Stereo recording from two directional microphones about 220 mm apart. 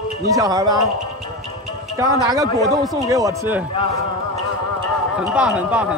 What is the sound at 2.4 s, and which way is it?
Speech, 15° left (ahead or behind).